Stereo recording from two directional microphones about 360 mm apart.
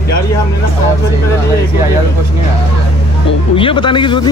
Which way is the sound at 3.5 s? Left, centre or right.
Centre.